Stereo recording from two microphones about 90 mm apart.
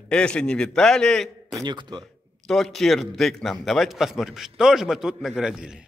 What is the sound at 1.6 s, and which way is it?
Speech, 55° right (ahead or behind).